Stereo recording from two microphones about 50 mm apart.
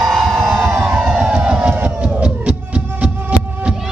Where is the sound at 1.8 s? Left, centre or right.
Right.